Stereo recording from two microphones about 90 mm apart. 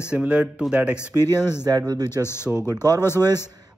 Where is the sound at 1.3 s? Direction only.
25° left (ahead or behind).